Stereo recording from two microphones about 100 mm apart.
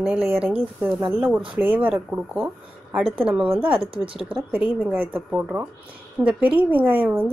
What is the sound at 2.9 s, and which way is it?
Speech, 5° right (ahead or behind).